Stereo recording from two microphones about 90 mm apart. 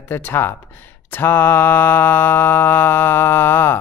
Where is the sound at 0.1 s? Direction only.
25° left (ahead or behind).